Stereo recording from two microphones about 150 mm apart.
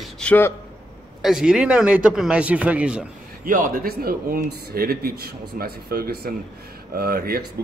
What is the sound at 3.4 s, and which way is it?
Speech, 70° right (ahead or behind).